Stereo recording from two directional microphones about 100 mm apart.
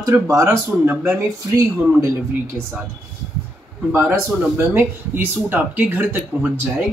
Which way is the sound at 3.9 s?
20° right (ahead or behind).